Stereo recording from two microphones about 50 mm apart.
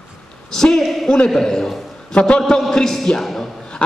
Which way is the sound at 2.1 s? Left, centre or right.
Centre.